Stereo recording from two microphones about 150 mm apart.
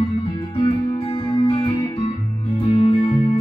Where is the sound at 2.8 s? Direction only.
40° left (ahead or behind).